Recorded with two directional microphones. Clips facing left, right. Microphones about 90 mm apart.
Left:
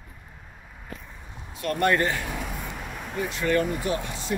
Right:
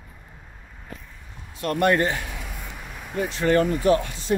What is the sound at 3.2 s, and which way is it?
Speech, 40° right (ahead or behind).